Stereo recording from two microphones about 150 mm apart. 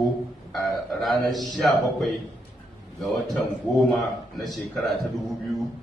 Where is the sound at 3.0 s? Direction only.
Centre (ahead or behind).